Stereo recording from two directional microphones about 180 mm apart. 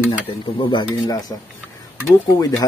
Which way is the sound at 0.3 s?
25° left (ahead or behind).